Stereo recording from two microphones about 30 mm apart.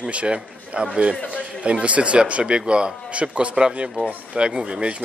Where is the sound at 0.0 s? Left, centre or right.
Right.